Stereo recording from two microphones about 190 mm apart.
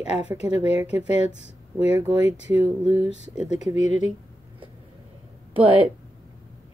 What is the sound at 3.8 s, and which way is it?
Speech, 90° right.